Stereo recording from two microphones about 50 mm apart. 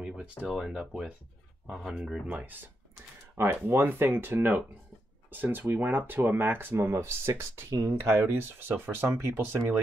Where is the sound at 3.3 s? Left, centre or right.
Right.